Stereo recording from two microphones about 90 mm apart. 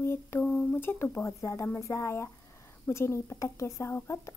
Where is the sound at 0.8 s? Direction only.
25° left (ahead or behind).